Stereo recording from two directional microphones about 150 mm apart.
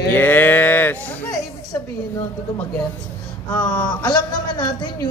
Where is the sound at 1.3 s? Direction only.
25° left (ahead or behind).